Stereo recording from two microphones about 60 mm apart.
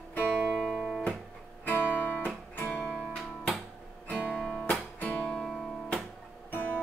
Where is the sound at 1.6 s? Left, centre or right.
Left.